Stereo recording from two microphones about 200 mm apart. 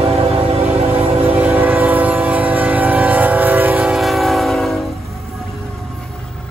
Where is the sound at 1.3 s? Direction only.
10° right (ahead or behind).